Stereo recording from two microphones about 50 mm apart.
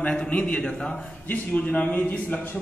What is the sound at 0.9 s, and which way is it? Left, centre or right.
A man's voice, left.